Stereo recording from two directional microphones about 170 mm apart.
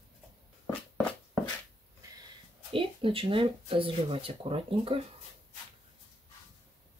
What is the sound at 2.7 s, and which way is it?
Speech, 30° right (ahead or behind).